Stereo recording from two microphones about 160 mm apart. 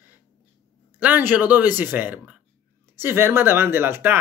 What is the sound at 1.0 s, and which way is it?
Speech, 10° right (ahead or behind).